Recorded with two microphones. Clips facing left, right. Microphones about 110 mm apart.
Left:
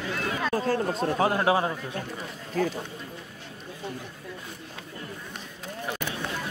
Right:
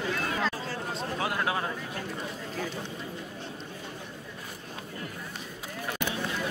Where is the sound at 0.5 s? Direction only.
45° left (ahead or behind); by 1.7 s 25° left (ahead or behind).